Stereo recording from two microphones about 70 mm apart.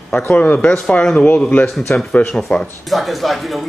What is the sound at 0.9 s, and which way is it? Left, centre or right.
A man's voice, centre.